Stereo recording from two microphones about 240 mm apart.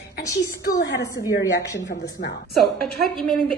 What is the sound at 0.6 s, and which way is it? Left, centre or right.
Speech, left.